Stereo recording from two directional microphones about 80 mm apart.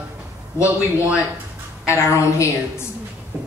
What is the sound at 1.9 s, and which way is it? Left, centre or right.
Speech, left.